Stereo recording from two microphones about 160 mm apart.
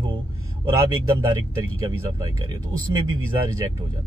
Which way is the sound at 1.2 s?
30° right (ahead or behind).